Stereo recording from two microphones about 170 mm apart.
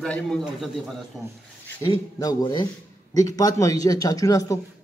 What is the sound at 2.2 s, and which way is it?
Speech, 25° left (ahead or behind).